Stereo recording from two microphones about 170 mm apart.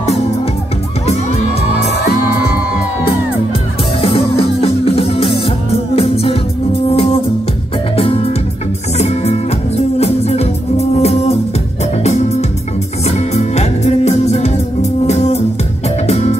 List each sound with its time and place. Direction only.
4.0 s music: 35° left (ahead or behind)